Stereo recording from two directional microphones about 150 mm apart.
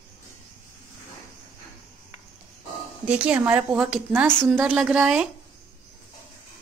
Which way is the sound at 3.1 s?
10° right (ahead or behind).